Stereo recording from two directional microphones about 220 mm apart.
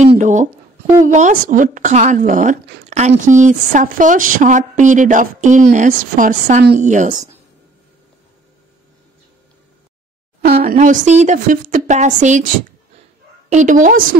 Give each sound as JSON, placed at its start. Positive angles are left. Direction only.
{"t": 0.0, "sound": "music", "side_deg": -30}
{"t": 1.0, "sound": "speech", "side_deg": -35}
{"t": 10.4, "sound": "speech", "side_deg": -40}
{"t": 13.5, "sound": "speech", "side_deg": -35}